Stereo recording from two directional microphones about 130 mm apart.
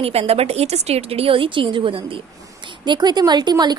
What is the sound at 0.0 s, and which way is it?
A woman's voice, 50° right (ahead or behind).